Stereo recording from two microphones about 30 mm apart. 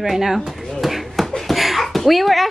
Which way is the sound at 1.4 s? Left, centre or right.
Centre.